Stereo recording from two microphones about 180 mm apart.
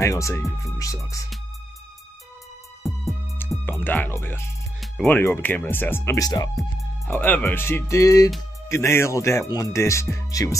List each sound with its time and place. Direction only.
0.0 s speech: 15° left (ahead or behind)
2.8 s music: centre (ahead or behind)
3.6 s speech: 10° left (ahead or behind)
7.1 s speech: 10° left (ahead or behind)